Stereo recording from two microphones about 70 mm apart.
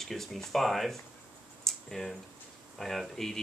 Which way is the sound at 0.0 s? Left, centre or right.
Centre.